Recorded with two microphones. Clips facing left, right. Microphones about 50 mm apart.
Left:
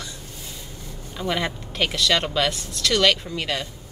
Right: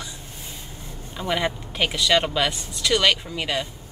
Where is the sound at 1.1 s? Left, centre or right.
Centre.